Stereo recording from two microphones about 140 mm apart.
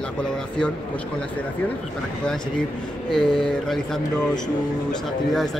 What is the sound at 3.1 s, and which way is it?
Speech, 5° left (ahead or behind).